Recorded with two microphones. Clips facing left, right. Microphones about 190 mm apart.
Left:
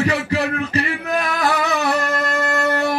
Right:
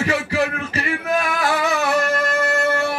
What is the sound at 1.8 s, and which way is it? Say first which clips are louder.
Music: right 1 dB; 35° left (ahead or behind).